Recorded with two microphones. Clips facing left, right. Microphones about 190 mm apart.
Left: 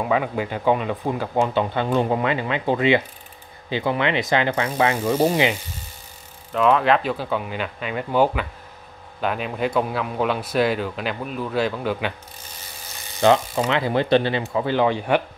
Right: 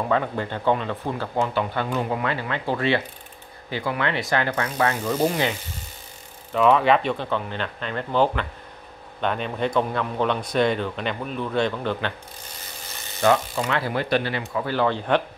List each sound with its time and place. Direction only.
0.0 s speech: 10° left (ahead or behind); by 2.2 s 30° left (ahead or behind)
2.2 s speech: 20° left (ahead or behind)
6.5 s speech: centre (ahead or behind)
13.2 s speech: 20° left (ahead or behind)